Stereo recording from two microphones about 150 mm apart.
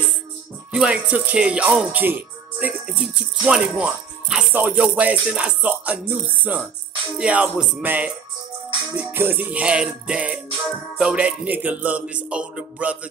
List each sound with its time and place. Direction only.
0.7 s speech: 5° right (ahead or behind)